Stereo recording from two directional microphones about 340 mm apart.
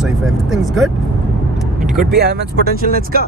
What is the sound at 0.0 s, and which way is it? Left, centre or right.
Speech, centre.